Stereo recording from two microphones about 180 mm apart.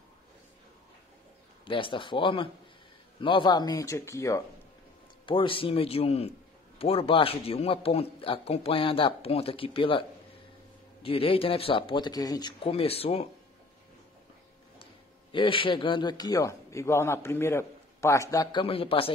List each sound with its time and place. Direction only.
1.7 s a man's voice: 30° left (ahead or behind)
5.2 s a man's voice: 30° left (ahead or behind)
15.3 s a man's voice: 30° left (ahead or behind)